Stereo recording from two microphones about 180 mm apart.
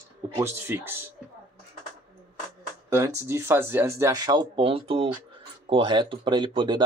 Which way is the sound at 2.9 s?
15° right (ahead or behind).